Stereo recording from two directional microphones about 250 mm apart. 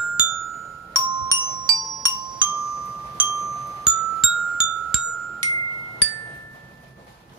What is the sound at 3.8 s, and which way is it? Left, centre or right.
Glockenspiel, centre.